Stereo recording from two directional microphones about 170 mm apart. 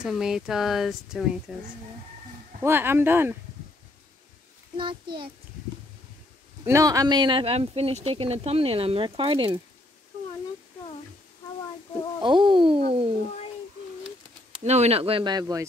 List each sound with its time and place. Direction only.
0.0 s speech: 5° right (ahead or behind)
2.6 s speech: 15° right (ahead or behind)
4.7 s speech: 30° right (ahead or behind)
6.6 s speech: 20° right (ahead or behind)
12.2 s speech: 30° right (ahead or behind)
14.6 s speech: 40° right (ahead or behind); by 15.6 s 20° right (ahead or behind)